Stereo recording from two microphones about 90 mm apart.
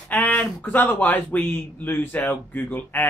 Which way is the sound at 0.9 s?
20° left (ahead or behind).